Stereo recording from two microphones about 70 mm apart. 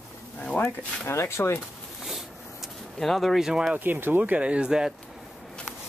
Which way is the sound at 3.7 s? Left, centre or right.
Right.